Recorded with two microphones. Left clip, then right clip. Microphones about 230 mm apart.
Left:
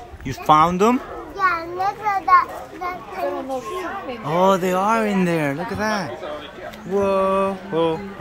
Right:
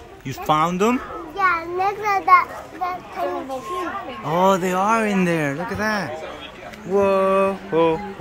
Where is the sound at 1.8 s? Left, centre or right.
Right.